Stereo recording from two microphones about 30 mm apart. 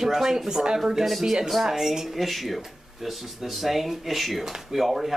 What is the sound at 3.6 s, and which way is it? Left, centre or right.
Speech, centre.